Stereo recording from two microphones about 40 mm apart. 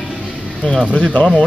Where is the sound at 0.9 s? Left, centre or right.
Left.